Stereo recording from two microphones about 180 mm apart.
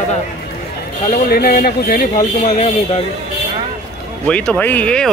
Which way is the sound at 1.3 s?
55° left (ahead or behind).